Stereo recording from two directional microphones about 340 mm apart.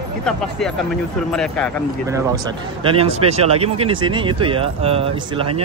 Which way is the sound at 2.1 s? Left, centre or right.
Centre.